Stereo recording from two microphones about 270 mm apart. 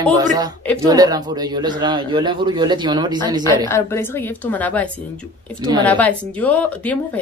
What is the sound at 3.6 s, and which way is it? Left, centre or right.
Speech, centre.